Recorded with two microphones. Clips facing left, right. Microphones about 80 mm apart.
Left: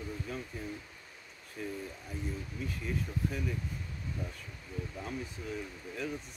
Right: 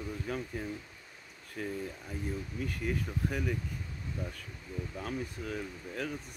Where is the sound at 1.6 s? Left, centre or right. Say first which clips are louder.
Right 2 dB; right.